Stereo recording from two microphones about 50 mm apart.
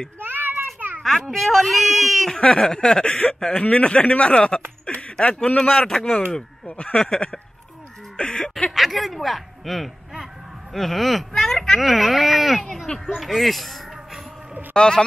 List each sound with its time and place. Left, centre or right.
0.2 s a sound: right
1.0 s speech: centre; by 4.6 s left
4.8 s a sound: left
5.1 s speech: centre
8.2 s a sound: centre
8.7 s speech: centre
12.8 s speech: centre
13.1 s speech: centre
14.7 s speech: centre